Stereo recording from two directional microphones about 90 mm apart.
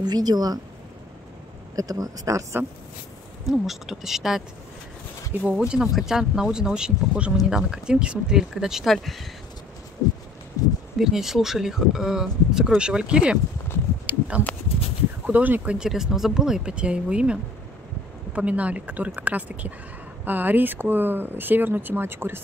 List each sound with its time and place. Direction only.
0.0 s a woman's voice: 45° right (ahead or behind)
1.8 s speech: 40° right (ahead or behind)
3.4 s speech: 5° right (ahead or behind)
5.5 s speech: 10° right (ahead or behind)
11.0 s speech: 5° right (ahead or behind)
14.0 s a sound: 15° right (ahead or behind)
15.2 s speech: 20° right (ahead or behind)